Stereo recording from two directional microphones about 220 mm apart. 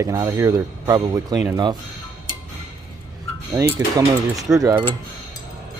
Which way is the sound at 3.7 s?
15° right (ahead or behind).